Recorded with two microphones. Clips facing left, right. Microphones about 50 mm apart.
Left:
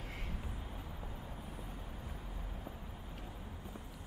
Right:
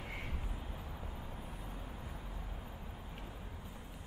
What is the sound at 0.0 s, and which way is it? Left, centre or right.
Vehicle, right.